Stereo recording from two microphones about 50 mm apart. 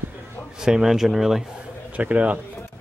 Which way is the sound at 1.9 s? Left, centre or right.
Right.